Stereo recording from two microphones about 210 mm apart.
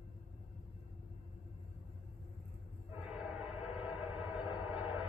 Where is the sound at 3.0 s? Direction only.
5° right (ahead or behind).